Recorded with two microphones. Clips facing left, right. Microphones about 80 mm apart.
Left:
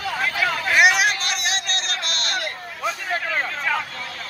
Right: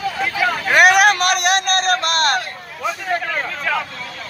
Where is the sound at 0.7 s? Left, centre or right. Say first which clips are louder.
Right 6 dB; right.